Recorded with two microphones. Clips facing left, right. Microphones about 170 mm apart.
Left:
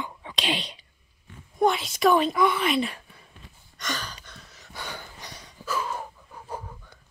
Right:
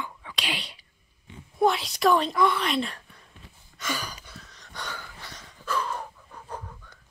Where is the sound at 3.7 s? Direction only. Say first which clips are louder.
Right 1 dB; 10° right (ahead or behind).